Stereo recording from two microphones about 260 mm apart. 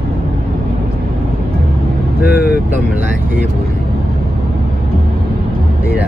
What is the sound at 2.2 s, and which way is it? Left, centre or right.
Vehicle, left.